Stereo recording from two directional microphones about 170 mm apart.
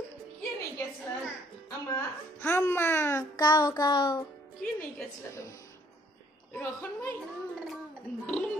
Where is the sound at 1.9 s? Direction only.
15° left (ahead or behind).